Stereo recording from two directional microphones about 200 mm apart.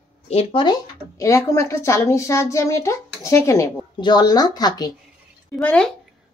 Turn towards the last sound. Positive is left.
turn(degrees=5)  # may be behind; listen again after turning